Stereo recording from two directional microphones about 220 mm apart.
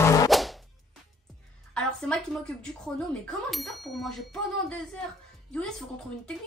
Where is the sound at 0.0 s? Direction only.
15° left (ahead or behind).